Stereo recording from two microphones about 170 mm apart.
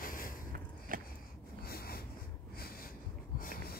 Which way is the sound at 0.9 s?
55° right (ahead or behind).